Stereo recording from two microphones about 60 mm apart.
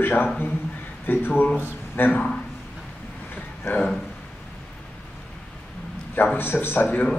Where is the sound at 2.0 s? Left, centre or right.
Left.